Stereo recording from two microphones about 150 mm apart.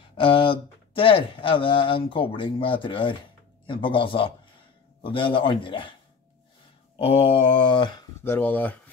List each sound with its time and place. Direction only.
0.2 s speech: 35° left (ahead or behind)
7.0 s speech: 40° left (ahead or behind)
8.2 s cutlery: 15° left (ahead or behind)